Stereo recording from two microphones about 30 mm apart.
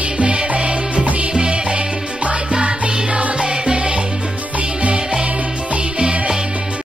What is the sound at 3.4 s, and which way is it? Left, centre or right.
Music, right.